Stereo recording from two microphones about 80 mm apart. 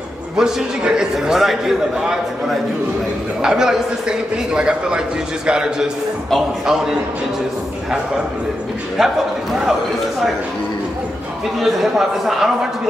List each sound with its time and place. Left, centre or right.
0.4 s a man's voice: centre
8.9 s a man's voice: centre
11.6 s a man's voice: centre